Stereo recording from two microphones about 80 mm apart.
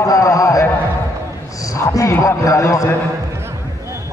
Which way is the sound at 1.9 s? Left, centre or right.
Left.